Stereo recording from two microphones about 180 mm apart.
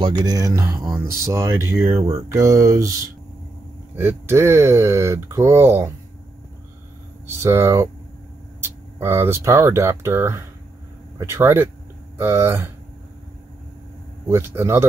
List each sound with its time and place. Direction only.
0.0 s speech: 20° right (ahead or behind)
0.7 s speech: centre (ahead or behind)
1.0 s speech: 15° right (ahead or behind)
1.9 s speech: 30° right (ahead or behind)
2.3 s speech: 15° right (ahead or behind)
7.2 s speech: 15° right (ahead or behind)
14.2 s speech: 15° right (ahead or behind)